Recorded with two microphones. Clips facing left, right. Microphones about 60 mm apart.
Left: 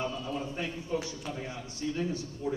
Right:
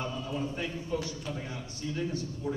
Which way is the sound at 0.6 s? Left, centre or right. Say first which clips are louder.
Even; left.